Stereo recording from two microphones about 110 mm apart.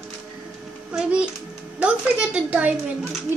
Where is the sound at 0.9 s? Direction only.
10° right (ahead or behind).